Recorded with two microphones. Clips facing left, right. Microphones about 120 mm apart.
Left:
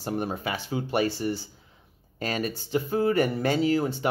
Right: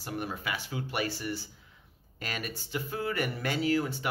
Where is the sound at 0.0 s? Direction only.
30° left (ahead or behind).